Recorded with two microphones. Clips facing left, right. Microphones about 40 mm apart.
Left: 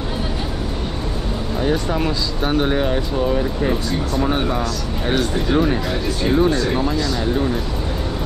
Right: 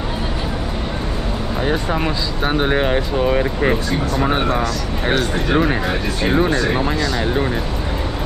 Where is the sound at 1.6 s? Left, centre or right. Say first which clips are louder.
Even; right.